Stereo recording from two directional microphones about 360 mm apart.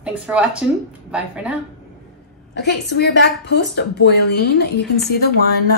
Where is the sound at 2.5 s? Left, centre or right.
Left.